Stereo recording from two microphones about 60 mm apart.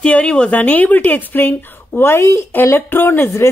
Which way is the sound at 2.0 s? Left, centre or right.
Left.